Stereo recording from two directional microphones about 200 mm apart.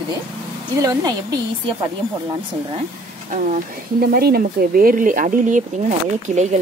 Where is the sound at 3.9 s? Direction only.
50° right (ahead or behind).